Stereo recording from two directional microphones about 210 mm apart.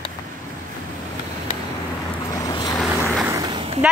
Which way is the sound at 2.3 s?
15° left (ahead or behind).